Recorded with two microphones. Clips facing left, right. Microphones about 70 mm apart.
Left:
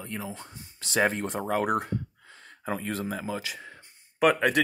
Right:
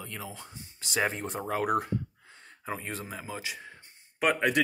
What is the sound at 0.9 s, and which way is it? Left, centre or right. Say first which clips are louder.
Speech: left 4 dB; left.